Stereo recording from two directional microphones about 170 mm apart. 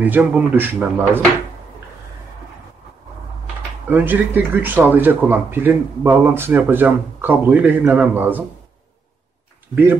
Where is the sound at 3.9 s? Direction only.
10° right (ahead or behind).